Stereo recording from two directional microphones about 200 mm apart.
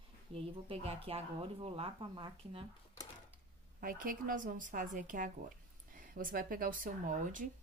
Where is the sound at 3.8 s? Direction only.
45° right (ahead or behind).